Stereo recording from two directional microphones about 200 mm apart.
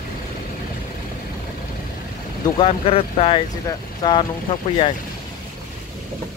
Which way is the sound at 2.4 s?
30° left (ahead or behind).